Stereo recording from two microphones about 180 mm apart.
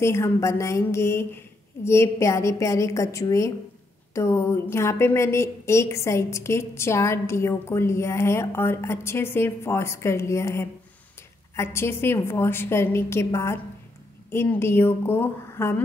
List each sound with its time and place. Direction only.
0.0 s a woman's voice: 15° left (ahead or behind)